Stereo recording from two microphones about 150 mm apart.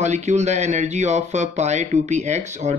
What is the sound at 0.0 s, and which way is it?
Speech, 50° right (ahead or behind).